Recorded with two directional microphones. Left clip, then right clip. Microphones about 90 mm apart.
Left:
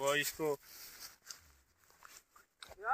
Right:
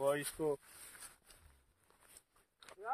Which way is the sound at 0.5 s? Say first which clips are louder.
Left 2 dB; 30° left (ahead or behind).